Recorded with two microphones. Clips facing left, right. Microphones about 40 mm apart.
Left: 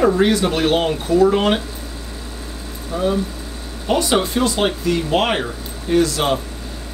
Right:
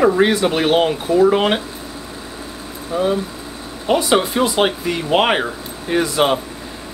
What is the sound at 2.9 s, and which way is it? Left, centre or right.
Speech, centre.